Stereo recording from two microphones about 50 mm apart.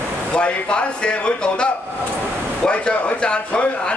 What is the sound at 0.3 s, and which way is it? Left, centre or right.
A man's voice, centre.